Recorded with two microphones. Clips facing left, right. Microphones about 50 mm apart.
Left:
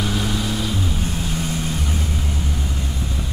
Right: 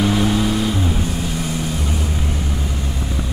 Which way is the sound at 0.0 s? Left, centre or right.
Right.